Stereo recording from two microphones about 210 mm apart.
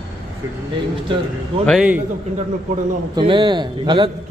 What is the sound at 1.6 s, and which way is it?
Speech, 5° right (ahead or behind).